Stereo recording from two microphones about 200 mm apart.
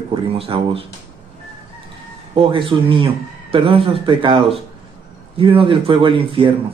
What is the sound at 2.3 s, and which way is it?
Speech, 25° right (ahead or behind).